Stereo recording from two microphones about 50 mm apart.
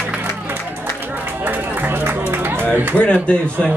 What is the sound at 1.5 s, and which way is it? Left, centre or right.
Music, right.